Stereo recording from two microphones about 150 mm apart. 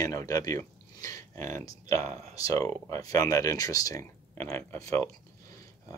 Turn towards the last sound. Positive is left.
turn(degrees=15)  # may be behind; listen again after turning